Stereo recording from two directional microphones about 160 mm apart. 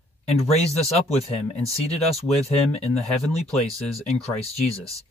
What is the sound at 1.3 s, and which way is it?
Speech, 40° left (ahead or behind).